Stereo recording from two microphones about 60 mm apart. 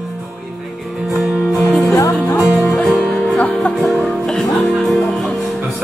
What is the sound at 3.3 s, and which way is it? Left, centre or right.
Music, left.